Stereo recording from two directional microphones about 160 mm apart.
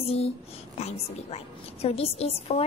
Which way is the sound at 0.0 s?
40° left (ahead or behind).